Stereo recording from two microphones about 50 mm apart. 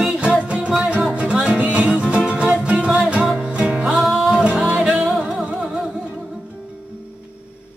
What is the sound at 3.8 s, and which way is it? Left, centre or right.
Music, centre.